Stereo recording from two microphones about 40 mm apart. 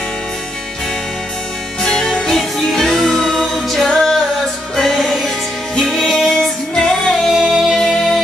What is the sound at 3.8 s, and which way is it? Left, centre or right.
A capella, centre.